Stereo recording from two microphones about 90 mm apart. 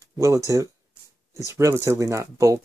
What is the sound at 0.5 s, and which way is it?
Speech, 35° right (ahead or behind).